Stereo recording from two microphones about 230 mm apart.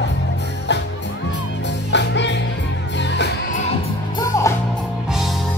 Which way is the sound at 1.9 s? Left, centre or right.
Left.